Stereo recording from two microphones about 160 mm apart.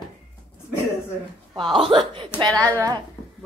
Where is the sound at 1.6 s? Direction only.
Centre (ahead or behind).